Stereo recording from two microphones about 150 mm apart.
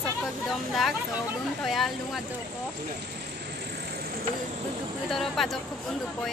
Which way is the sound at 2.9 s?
90° right.